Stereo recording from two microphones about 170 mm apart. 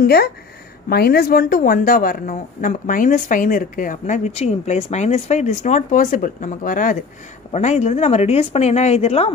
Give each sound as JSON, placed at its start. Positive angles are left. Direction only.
{"t": 0.0, "sound": "a woman's voice", "side_deg": 65}